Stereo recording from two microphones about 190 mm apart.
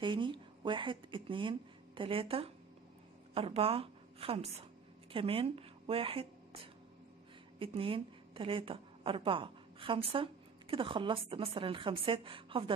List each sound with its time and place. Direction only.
0.0 s a woman's voice: 25° right (ahead or behind)